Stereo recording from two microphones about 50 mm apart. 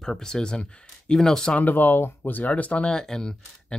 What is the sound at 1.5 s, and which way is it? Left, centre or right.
Speech, left.